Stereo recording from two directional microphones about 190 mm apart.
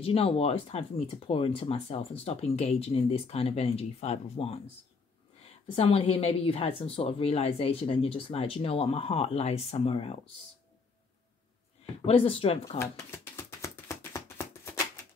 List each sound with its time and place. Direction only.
0.0 s speech: 30° left (ahead or behind)
5.8 s speech: 30° left (ahead or behind)
12.1 s speech: 30° left (ahead or behind)
12.7 s a sound: 15° left (ahead or behind)